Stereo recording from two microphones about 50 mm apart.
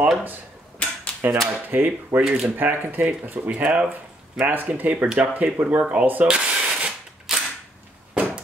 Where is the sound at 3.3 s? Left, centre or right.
Right.